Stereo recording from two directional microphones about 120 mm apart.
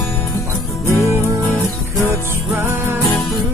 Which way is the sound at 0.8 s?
25° left (ahead or behind).